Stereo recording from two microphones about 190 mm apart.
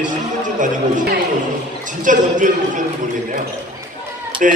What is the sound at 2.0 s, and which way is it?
Speech, 40° right (ahead or behind).